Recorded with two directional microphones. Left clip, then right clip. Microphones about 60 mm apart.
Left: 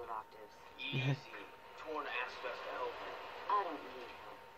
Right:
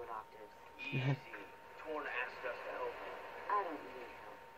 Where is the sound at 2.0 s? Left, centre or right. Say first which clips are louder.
Left 1 dB; left.